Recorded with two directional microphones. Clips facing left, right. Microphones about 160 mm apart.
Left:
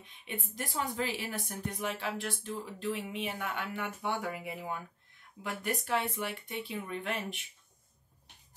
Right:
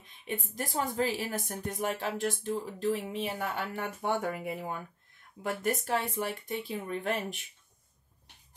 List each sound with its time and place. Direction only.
0.0 s a woman's voice: 40° right (ahead or behind)
0.6 s music: 40° right (ahead or behind)